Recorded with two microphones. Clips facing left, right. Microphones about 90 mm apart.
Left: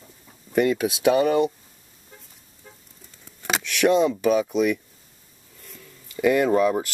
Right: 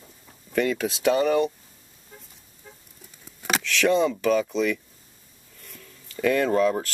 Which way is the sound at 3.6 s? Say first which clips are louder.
Left 2 dB; 15° left (ahead or behind).